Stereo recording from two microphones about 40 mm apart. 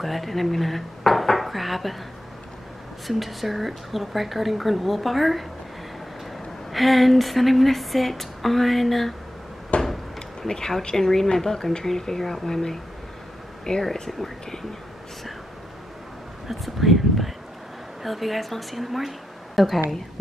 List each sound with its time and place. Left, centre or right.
0.0 s speech: centre
3.1 s speech: centre
6.7 s speech: centre
9.7 s a sound: left
10.5 s speech: centre
13.9 s speech: centre
16.4 s a sound: centre
18.0 s speech: centre